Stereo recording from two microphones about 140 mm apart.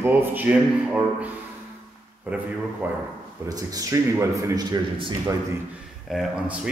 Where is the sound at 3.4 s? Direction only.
25° right (ahead or behind).